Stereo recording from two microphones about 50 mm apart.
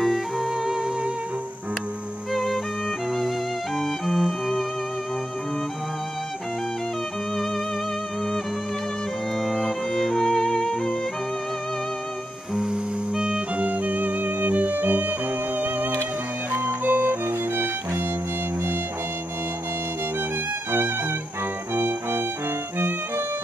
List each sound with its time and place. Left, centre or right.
0.0 s music: centre
2.3 s music: centre
3.7 s music: centre
9.4 s music: centre
13.1 s music: centre
13.6 s music: right
16.5 s music: right
21.7 s music: right